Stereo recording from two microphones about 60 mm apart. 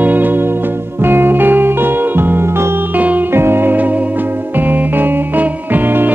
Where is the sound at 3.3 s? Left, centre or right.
Right.